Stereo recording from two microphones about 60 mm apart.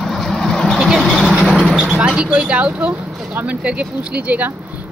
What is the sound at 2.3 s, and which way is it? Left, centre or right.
A woman's voice, right.